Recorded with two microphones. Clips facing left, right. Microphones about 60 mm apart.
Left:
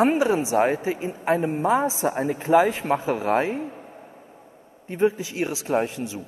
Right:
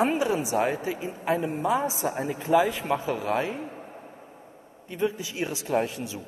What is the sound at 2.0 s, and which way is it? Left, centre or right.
Speech, left.